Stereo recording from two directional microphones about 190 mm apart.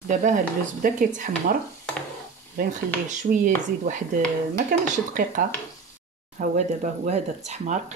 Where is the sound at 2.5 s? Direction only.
45° right (ahead or behind).